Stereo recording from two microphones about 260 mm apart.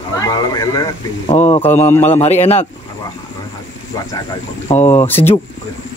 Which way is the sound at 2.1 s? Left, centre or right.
Left.